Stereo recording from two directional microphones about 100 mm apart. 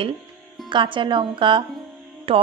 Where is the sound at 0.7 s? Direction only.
55° right (ahead or behind).